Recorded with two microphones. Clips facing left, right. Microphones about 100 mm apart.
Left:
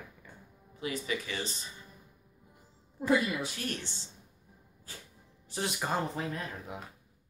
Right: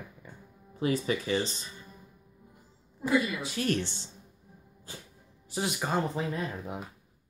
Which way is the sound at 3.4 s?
80° right.